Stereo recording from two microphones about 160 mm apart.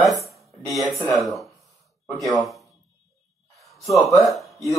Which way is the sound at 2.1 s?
Centre (ahead or behind).